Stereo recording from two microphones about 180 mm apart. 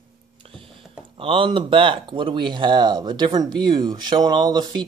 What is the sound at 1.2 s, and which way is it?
Speech, 30° right (ahead or behind).